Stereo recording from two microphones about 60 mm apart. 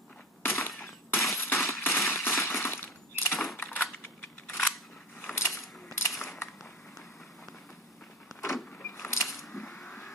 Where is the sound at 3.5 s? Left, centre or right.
Left.